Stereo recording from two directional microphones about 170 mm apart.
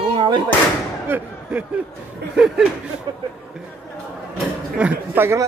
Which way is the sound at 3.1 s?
25° right (ahead or behind).